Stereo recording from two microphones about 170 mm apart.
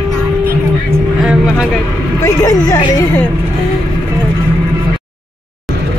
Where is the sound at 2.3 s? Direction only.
20° left (ahead or behind).